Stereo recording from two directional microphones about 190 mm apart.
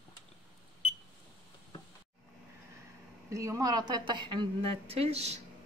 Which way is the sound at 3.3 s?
15° right (ahead or behind).